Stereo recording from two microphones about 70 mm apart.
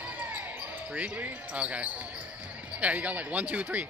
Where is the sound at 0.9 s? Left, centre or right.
Centre.